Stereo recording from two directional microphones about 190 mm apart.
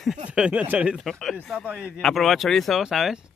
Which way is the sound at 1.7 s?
5° right (ahead or behind).